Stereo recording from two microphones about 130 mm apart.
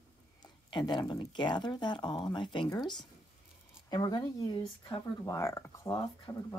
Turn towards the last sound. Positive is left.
turn(degrees=25)  # may be behind; listen again after turning